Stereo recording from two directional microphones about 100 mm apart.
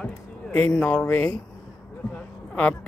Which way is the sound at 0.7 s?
10° left (ahead or behind).